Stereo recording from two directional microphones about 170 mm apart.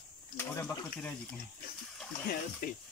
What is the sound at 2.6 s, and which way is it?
Speech, 55° left (ahead or behind).